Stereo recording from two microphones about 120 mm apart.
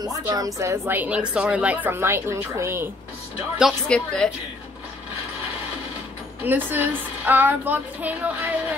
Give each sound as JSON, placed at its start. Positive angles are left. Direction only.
{"t": 0.0, "sound": "a woman's voice", "side_deg": -35}
{"t": 0.6, "sound": "a woman's voice", "side_deg": -20}
{"t": 3.8, "sound": "a woman's voice", "side_deg": 5}
{"t": 6.4, "sound": "a woman's voice", "side_deg": -15}